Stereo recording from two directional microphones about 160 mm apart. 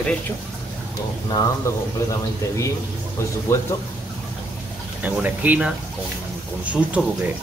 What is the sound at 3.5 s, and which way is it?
Speech, 15° left (ahead or behind).